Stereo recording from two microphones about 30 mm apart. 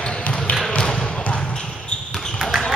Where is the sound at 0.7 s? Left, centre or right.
Left.